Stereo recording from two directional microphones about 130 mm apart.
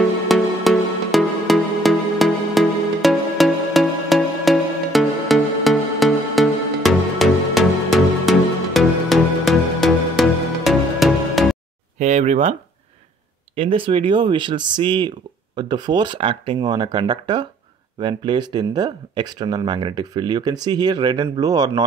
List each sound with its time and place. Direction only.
0.0 s music: centre (ahead or behind)
12.0 s speech: 60° right (ahead or behind)
13.6 s speech: 45° right (ahead or behind)